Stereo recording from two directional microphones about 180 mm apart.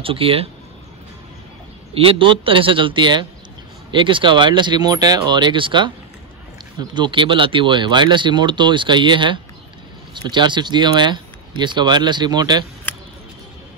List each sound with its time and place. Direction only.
0.0 s speech: 30° right (ahead or behind)
2.0 s speech: 30° right (ahead or behind)
12.9 s a sound: 10° left (ahead or behind)